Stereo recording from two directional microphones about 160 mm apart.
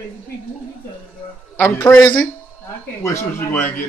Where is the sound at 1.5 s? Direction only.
10° left (ahead or behind).